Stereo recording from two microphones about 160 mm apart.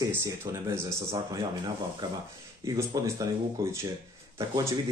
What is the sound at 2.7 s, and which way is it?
Speech, 20° right (ahead or behind).